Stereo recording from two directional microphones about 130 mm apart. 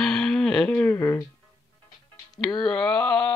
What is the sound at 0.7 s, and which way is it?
Speech, 15° left (ahead or behind).